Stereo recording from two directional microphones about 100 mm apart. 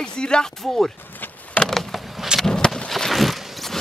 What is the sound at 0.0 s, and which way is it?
Speech, 10° left (ahead or behind).